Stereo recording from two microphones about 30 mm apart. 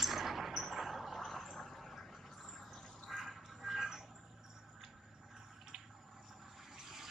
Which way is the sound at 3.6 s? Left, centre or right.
Centre.